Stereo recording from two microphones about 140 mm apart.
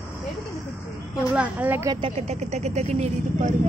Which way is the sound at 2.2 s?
55° right (ahead or behind).